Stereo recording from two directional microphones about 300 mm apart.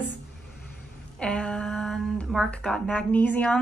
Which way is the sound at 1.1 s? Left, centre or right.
Centre.